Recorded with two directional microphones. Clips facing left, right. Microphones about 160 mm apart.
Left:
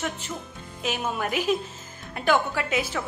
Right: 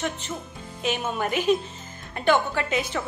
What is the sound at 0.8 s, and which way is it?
A woman's voice, centre (ahead or behind).